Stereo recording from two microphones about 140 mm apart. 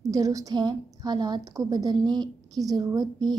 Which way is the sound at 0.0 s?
25° right (ahead or behind).